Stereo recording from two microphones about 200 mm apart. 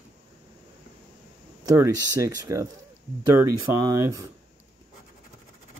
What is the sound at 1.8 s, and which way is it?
Speech, 15° right (ahead or behind).